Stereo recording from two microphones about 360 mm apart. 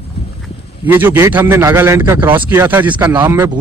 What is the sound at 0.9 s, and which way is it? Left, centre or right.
A man's voice, centre.